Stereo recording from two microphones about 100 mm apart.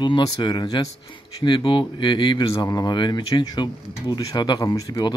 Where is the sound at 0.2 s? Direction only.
45° left (ahead or behind).